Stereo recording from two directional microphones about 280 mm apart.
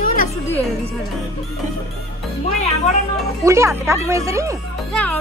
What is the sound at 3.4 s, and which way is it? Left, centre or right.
Speech, centre.